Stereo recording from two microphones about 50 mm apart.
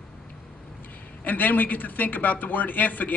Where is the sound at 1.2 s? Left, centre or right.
Left.